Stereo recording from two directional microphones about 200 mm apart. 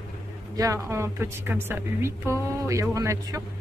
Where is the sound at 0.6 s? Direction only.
15° right (ahead or behind).